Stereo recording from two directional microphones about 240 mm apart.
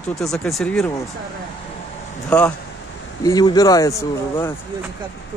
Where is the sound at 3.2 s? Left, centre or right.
Centre.